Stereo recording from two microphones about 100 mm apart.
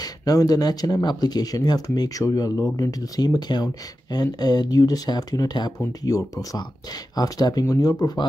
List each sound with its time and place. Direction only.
0.0 s speech: 40° left (ahead or behind)